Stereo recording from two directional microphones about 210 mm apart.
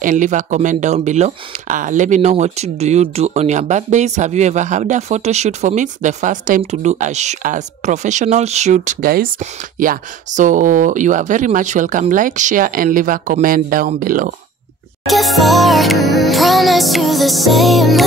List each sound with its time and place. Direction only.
0.0 s speech: 35° right (ahead or behind)
15.0 s music: centre (ahead or behind)